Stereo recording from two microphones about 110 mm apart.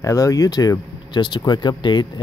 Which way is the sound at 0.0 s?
30° left (ahead or behind).